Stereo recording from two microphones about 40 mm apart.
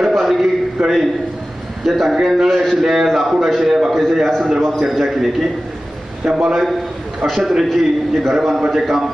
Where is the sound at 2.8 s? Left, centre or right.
Centre.